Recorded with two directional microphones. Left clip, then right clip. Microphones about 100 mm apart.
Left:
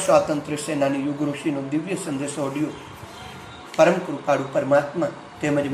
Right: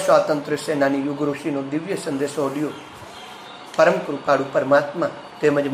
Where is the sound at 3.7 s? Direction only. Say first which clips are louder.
Right 1 dB; 20° right (ahead or behind).